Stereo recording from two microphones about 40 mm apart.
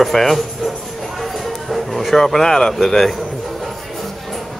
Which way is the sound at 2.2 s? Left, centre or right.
Centre.